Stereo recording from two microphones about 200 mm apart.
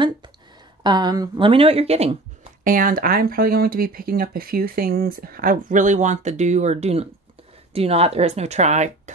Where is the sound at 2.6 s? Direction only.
45° right (ahead or behind).